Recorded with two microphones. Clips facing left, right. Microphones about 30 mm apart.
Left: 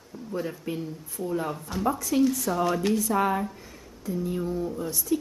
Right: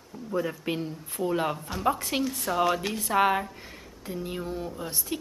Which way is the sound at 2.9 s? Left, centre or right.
Right.